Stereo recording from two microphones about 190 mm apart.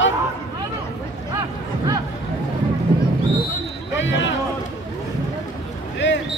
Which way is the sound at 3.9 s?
75° left (ahead or behind).